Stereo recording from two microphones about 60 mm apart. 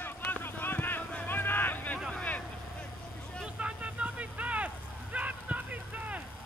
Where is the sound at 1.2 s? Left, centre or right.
Left.